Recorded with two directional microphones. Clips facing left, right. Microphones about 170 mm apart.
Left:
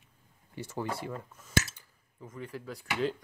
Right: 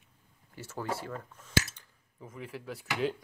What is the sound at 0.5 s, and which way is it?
Speech, 15° left (ahead or behind).